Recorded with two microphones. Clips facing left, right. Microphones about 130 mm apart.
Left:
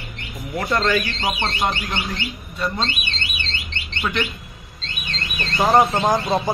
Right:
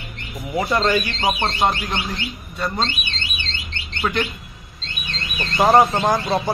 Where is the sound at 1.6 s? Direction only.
30° right (ahead or behind).